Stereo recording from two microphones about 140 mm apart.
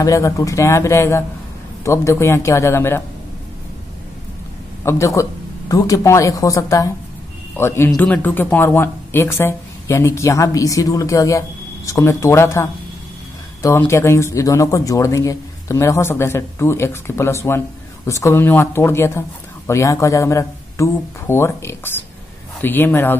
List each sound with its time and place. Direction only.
0.0 s speech: 25° left (ahead or behind)
4.8 s speech: 20° left (ahead or behind)